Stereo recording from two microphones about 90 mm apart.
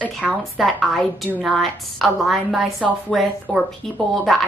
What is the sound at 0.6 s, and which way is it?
Speech, 5° left (ahead or behind).